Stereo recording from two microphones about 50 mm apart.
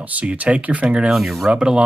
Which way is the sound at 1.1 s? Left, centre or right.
Centre.